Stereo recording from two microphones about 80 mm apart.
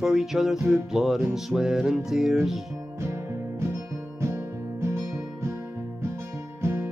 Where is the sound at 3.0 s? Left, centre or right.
Right.